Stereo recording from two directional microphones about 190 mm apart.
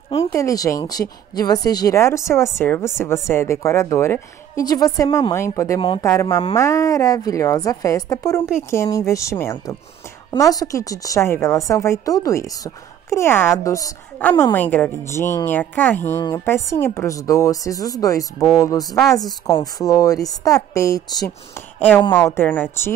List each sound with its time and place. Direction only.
0.2 s a woman's voice: 15° left (ahead or behind)
5.8 s speech: 25° left (ahead or behind)
6.0 s a woman's voice: 15° left (ahead or behind)
21.7 s a woman's voice: 10° left (ahead or behind)